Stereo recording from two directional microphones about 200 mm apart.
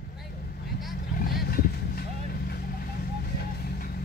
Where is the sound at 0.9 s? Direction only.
50° left (ahead or behind).